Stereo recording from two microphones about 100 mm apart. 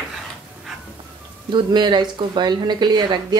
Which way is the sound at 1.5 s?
50° right (ahead or behind).